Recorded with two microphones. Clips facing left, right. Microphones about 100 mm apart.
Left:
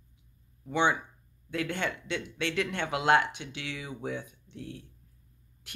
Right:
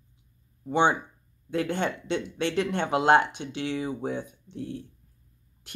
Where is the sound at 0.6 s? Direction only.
30° right (ahead or behind).